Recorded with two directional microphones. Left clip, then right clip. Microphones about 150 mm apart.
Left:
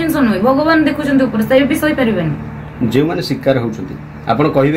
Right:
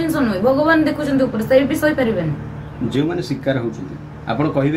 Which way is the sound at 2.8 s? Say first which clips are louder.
Left 5 dB; 70° left (ahead or behind).